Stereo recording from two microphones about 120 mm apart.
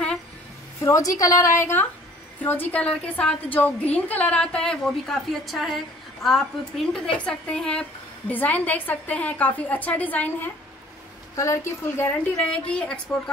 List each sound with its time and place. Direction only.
0.7 s a woman's voice: 25° left (ahead or behind)
12.6 s a woman's voice: 10° left (ahead or behind)